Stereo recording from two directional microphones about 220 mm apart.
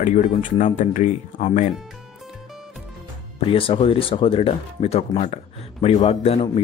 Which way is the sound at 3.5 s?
25° left (ahead or behind).